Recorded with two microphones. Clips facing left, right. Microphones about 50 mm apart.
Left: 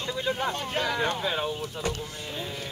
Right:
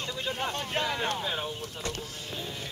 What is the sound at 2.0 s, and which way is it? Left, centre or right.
Speech, left.